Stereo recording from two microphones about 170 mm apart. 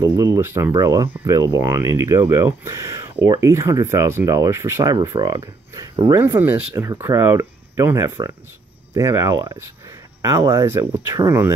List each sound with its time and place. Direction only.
0.0 s speech: 15° right (ahead or behind)